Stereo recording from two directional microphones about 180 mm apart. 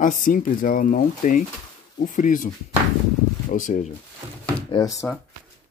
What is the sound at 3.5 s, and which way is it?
Speech, 45° left (ahead or behind).